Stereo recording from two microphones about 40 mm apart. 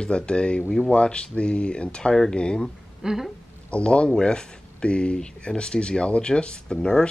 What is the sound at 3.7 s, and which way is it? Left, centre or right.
Speech, left.